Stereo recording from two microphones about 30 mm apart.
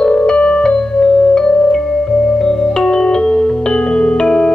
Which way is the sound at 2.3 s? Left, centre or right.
Left.